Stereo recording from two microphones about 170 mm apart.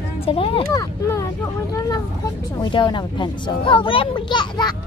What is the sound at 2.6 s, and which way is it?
A child's voice, 25° left (ahead or behind).